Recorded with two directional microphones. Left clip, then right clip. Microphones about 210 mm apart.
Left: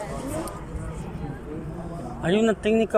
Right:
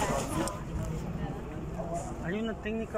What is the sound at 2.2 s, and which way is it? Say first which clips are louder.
Speech: left 18 dB; 60° left (ahead or behind).